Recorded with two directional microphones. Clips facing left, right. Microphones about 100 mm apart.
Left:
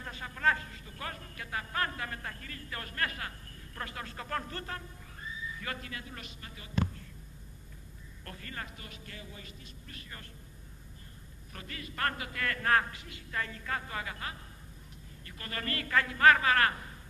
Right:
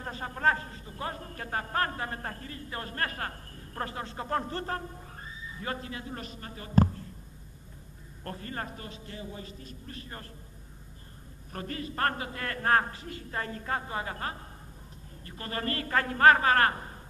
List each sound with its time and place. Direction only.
0.0 s a man's voice: 40° right (ahead or behind)
8.2 s a man's voice: 35° right (ahead or behind)
8.9 s a man's voice: 30° right (ahead or behind)
11.5 s a man's voice: 40° right (ahead or behind)